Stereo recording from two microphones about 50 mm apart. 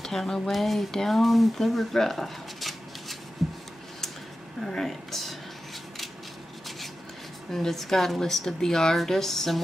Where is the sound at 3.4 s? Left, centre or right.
Centre.